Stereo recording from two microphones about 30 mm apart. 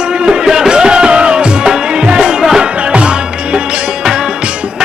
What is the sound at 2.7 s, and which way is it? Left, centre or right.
Music, right.